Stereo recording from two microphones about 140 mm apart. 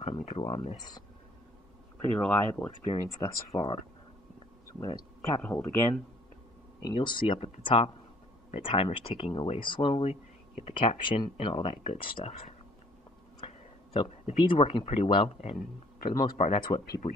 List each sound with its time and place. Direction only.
0.0 s speech: 50° left (ahead or behind)
0.4 s speech: 40° left (ahead or behind)
2.1 s speech: 5° left (ahead or behind)
2.8 s speech: 45° left (ahead or behind)
4.7 s speech: 30° left (ahead or behind)
5.4 s speech: 10° left (ahead or behind)
6.8 s speech: 35° left (ahead or behind); by 12.5 s 50° left (ahead or behind)
13.9 s speech: 40° left (ahead or behind)
15.5 s speech: 80° left
16.5 s speech: 35° left (ahead or behind)